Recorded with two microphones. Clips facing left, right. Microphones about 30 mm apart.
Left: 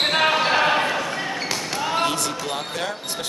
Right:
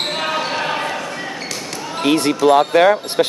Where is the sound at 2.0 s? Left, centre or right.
Right.